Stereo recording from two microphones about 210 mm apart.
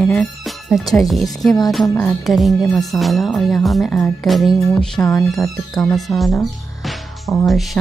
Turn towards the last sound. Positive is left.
turn(degrees=0)  # may be behind; listen again after turning